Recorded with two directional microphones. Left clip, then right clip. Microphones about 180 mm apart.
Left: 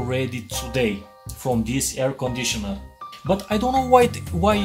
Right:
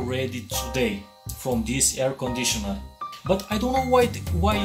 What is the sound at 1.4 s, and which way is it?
Music, 35° left (ahead or behind).